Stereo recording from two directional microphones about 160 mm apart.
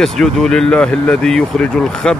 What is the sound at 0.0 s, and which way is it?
Speech, 5° left (ahead or behind).